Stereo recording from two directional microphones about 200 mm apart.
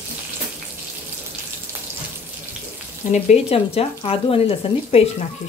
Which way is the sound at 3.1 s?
35° left (ahead or behind).